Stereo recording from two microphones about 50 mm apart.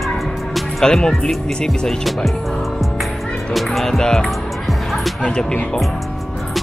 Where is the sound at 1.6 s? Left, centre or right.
Centre.